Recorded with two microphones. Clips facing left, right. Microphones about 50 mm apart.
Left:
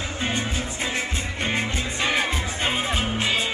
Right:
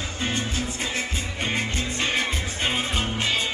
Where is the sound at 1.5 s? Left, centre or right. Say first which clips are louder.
Left 1 dB; centre.